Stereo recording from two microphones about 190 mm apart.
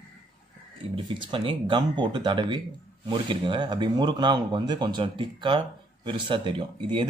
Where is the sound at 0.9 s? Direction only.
25° right (ahead or behind).